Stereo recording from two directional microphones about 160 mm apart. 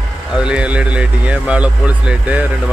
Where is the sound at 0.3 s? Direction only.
5° right (ahead or behind).